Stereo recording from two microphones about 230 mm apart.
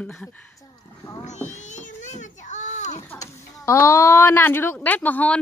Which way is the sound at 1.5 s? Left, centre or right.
Left.